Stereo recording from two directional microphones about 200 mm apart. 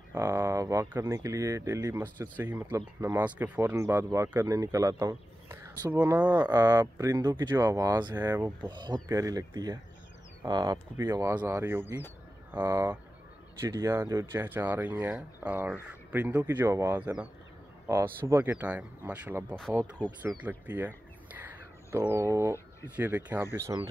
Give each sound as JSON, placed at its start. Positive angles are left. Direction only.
{"t": 0.1, "sound": "speech", "side_deg": -15}